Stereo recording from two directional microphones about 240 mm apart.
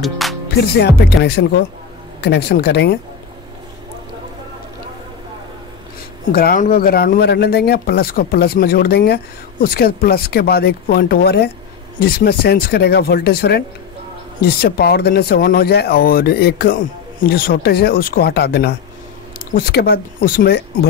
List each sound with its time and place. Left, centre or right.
0.0 s music: centre
0.6 s speech: left
6.3 s speech: left